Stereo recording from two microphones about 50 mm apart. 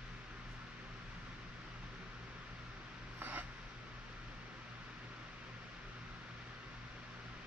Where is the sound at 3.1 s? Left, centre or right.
Right.